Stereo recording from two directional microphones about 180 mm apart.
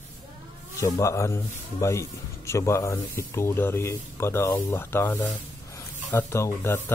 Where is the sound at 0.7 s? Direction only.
15° left (ahead or behind).